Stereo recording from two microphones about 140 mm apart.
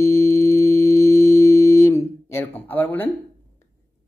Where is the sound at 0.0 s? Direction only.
20° left (ahead or behind).